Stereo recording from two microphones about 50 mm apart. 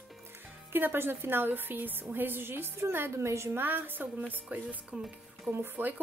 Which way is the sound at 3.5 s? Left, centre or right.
Right.